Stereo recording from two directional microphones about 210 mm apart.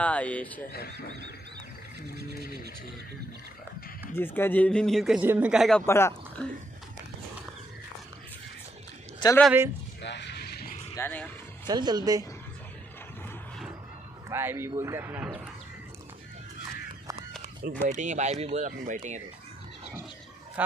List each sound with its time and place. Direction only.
0.0 s speech: 5° left (ahead or behind)
4.2 s a man's voice: 10° left (ahead or behind)
9.4 s a man's voice: 5° right (ahead or behind)
10.0 s a sound: 55° left (ahead or behind)
11.0 s speech: 10° left (ahead or behind)
11.6 s speech: 20° right (ahead or behind)
14.3 s a man's voice: 10° right (ahead or behind)
17.8 s speech: 35° right (ahead or behind)
20.6 s speech: 10° right (ahead or behind)